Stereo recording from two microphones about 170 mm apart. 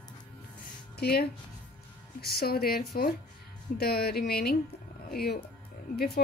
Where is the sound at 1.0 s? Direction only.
65° left (ahead or behind).